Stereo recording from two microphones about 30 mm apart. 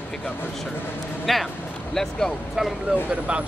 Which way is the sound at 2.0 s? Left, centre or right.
Centre.